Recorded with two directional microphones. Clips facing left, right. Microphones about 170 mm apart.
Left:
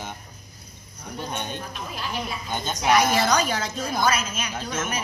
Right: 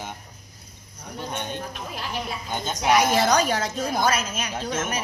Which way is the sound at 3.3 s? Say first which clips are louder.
Right 2 dB; 45° right (ahead or behind).